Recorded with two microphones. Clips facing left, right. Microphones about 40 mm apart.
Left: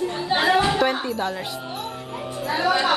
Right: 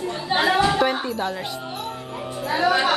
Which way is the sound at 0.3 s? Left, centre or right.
Centre.